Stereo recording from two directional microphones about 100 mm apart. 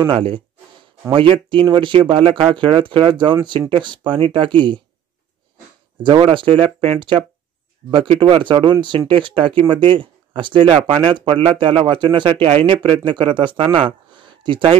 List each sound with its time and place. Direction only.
0.1 s speech: 60° right (ahead or behind)
6.0 s speech: 55° right (ahead or behind)